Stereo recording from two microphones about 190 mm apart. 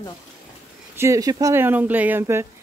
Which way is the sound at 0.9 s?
15° right (ahead or behind).